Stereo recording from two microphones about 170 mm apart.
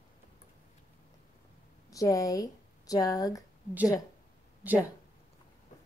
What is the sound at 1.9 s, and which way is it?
Speech, 20° left (ahead or behind).